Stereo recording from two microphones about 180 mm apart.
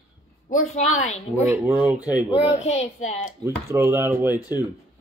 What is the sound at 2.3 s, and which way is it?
A woman's voice, 35° left (ahead or behind).